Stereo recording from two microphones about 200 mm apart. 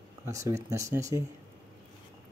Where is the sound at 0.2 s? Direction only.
15° right (ahead or behind).